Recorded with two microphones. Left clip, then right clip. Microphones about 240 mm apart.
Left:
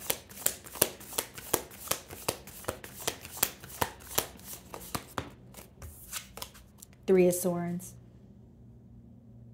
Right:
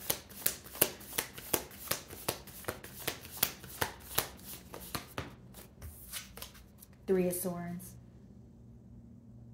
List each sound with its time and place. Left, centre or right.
0.0 s shuffling cards: left
7.1 s a woman's voice: left